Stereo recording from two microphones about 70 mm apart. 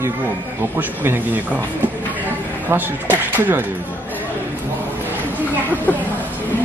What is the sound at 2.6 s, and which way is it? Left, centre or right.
Speech, right.